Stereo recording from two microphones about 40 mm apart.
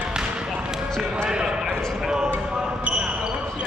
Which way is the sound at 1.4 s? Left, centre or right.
Centre.